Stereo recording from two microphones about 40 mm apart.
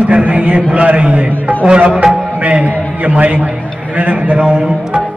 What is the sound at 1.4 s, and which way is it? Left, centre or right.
Music, right.